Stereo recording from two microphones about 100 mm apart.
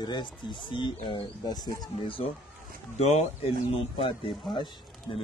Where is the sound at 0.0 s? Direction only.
50° left (ahead or behind).